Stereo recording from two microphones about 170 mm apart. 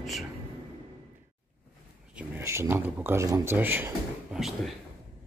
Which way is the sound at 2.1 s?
15° right (ahead or behind).